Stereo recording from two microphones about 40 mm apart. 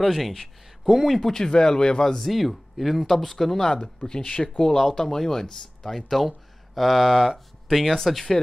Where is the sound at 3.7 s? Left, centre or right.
Left.